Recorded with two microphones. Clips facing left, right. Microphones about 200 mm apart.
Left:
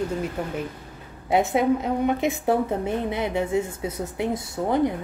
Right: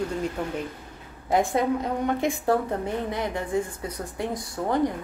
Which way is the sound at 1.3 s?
5° left (ahead or behind).